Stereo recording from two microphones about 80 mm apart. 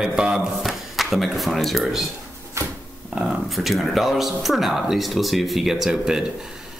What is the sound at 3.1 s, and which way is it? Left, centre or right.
Speech, centre.